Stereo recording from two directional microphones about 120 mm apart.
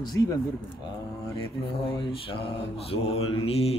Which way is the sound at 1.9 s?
50° left (ahead or behind).